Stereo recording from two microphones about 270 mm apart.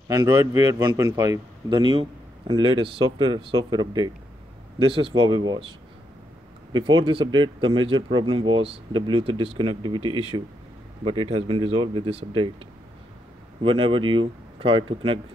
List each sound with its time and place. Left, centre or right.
0.2 s a man's voice: centre
6.7 s speech: centre
13.6 s speech: centre